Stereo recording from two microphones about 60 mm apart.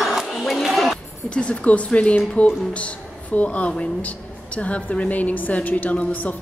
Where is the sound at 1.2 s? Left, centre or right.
Centre.